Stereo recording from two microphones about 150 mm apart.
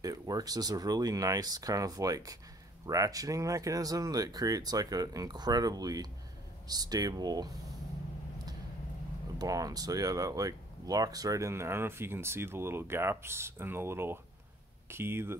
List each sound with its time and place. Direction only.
0.0 s speech: 25° right (ahead or behind)
9.4 s speech: 25° right (ahead or behind)